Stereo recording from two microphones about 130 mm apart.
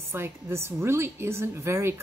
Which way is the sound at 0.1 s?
20° right (ahead or behind).